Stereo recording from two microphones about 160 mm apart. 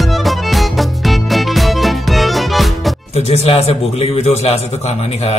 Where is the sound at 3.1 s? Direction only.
40° left (ahead or behind).